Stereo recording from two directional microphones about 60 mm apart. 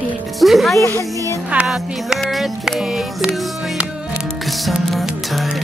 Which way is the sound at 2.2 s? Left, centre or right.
Centre.